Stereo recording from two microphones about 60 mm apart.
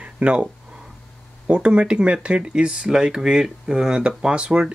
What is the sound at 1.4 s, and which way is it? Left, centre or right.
Speech, centre.